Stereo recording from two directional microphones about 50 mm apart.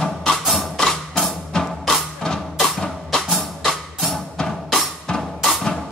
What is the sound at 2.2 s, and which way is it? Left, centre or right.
Music, centre.